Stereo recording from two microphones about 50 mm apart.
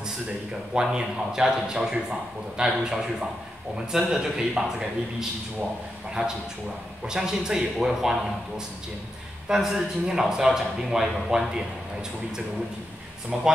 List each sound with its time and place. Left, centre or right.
0.7 s a man's voice: centre
6.2 s a man's voice: right
7.1 s a man's voice: centre
13.3 s a man's voice: centre